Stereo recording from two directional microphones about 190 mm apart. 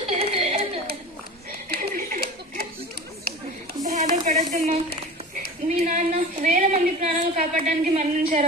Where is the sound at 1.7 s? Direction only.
55° right (ahead or behind).